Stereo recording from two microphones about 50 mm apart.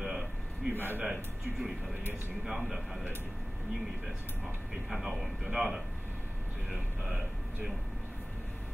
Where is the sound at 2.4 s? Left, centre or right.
Centre.